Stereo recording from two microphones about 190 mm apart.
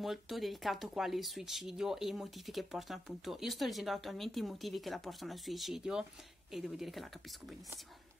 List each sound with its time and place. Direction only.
0.0 s speech: centre (ahead or behind)